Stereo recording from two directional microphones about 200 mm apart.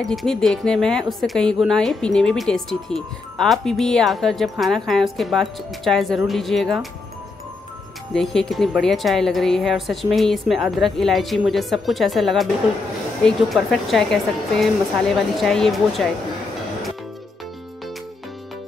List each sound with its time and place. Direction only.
0.0 s speech: centre (ahead or behind)
8.1 s speech: centre (ahead or behind)